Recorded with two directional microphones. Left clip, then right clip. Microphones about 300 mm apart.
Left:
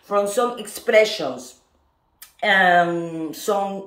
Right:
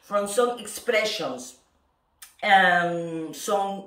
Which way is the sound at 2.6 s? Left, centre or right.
Centre.